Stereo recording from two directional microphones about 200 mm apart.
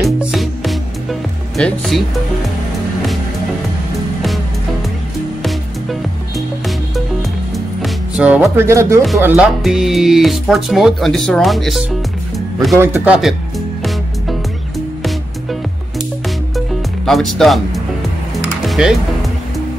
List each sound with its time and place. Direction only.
0.0 s music: centre (ahead or behind)
1.6 s speech: centre (ahead or behind)
7.5 s music: 5° right (ahead or behind)
9.2 s speech: 5° right (ahead or behind)
16.5 s music: centre (ahead or behind)
18.7 s music: centre (ahead or behind)